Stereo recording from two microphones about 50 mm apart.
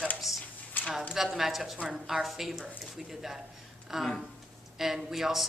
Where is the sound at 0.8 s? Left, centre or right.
Left.